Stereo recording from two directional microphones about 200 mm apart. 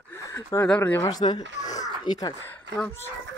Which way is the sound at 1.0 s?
20° left (ahead or behind).